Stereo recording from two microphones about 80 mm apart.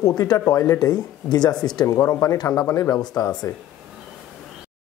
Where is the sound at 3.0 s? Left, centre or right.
Left.